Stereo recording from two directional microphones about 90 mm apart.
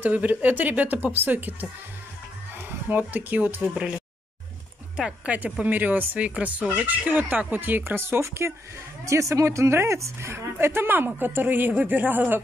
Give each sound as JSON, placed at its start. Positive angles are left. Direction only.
{"t": 0.0, "sound": "speech", "side_deg": -15}
{"t": 2.9, "sound": "speech", "side_deg": -20}
{"t": 4.9, "sound": "speech", "side_deg": -10}